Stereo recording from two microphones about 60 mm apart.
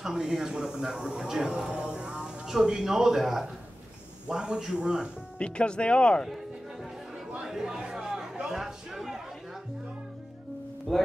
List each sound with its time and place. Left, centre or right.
0.0 s speech: centre
5.4 s speech: centre
6.2 s music: centre
7.4 s a sound: centre
10.9 s speech: centre